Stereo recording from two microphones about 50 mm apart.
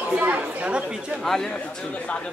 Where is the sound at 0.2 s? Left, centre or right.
Right.